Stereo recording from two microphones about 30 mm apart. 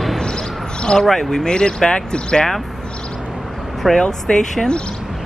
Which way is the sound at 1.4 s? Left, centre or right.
Left.